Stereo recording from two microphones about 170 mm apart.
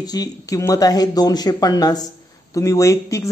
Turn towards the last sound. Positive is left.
turn(degrees=20)  # may be behind; listen again after turning